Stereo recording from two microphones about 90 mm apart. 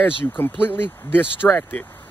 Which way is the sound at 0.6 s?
25° left (ahead or behind).